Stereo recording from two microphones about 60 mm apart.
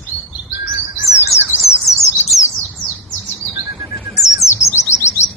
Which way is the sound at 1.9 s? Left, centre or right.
Left.